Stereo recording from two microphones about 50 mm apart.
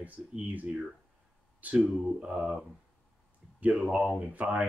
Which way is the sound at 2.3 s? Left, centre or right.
Right.